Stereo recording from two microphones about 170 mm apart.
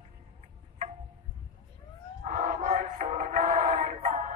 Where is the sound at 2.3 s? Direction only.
55° right (ahead or behind).